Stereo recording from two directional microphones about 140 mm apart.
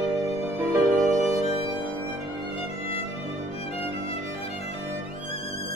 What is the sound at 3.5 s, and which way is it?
Music, 45° left (ahead or behind).